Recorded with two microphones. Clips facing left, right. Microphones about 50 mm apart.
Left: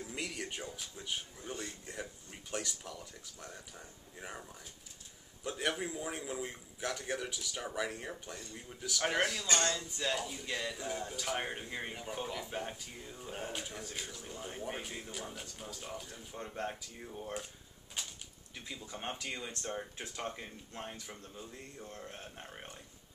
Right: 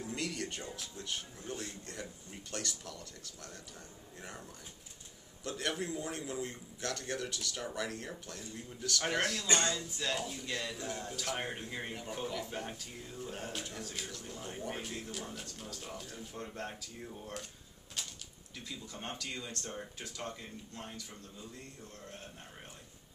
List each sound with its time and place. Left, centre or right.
0.1 s music: centre
0.7 s speech: centre
18.0 s a sound: centre
18.7 s speech: centre